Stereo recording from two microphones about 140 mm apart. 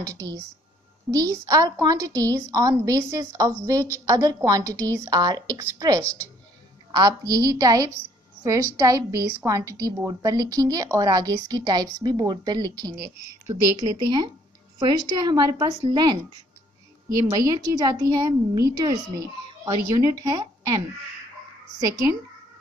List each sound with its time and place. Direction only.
0.0 s a woman's voice: 25° right (ahead or behind)